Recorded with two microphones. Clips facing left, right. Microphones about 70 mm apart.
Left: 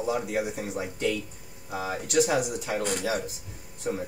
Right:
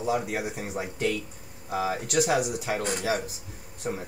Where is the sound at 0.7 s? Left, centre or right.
Right.